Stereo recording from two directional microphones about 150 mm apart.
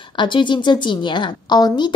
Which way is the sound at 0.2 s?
30° left (ahead or behind).